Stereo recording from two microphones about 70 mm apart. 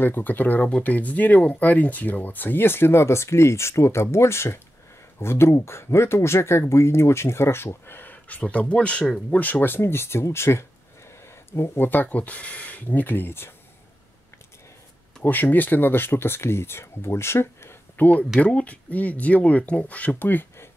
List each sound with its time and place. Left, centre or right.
0.0 s speech: left
15.2 s speech: left
18.4 s speech: centre